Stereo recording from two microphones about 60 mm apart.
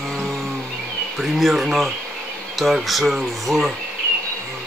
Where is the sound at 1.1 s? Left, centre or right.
Centre.